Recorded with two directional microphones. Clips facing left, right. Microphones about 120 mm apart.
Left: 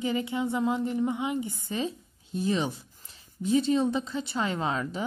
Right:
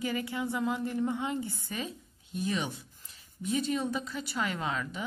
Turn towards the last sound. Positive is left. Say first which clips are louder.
# left 5 dB
turn(degrees=30)  # may be behind; listen again after turning